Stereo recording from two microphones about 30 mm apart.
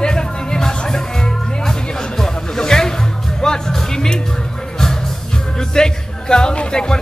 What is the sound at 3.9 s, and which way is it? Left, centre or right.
Speech, left.